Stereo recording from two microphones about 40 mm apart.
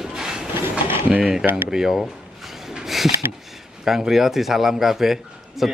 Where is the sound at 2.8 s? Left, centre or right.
Centre.